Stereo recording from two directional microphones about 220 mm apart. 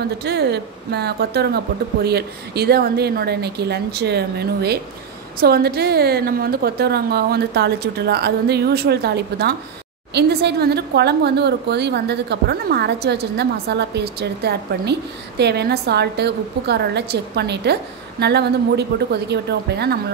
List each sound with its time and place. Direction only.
0.2 s speech: 50° right (ahead or behind)